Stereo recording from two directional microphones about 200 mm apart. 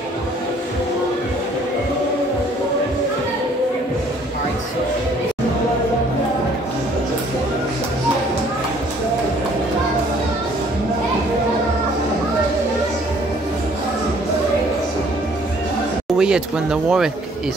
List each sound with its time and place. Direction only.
16.2 s speech: 5° right (ahead or behind)